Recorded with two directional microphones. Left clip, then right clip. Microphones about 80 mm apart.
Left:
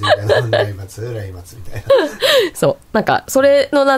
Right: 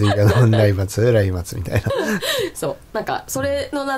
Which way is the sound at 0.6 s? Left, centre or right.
Right.